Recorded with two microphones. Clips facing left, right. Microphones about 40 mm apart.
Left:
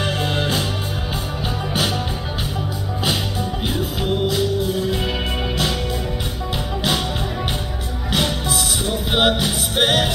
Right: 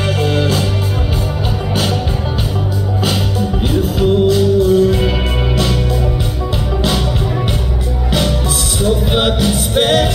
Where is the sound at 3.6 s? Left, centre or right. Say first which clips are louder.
Right 10 dB; centre.